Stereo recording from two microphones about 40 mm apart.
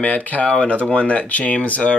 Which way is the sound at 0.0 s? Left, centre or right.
Left.